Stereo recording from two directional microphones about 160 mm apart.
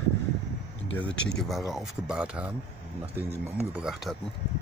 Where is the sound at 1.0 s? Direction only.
5° left (ahead or behind).